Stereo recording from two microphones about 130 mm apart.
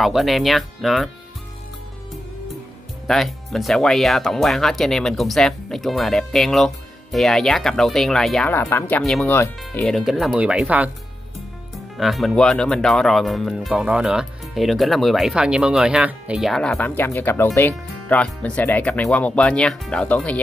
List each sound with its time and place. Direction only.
0.0 s speech: centre (ahead or behind)
3.1 s speech: centre (ahead or behind)
8.5 s speech: 20° left (ahead or behind)
9.3 s speech: 20° left (ahead or behind)
9.8 s speech: centre (ahead or behind)